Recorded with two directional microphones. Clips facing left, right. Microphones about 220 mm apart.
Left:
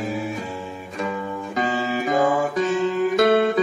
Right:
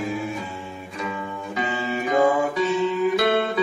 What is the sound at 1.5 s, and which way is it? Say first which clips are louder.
Music: left 3 dB; 45° left (ahead or behind).